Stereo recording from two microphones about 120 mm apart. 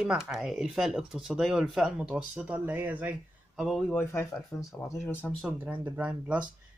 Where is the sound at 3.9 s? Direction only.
20° left (ahead or behind).